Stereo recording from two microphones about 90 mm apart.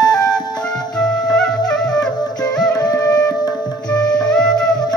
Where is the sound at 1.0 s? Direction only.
10° left (ahead or behind).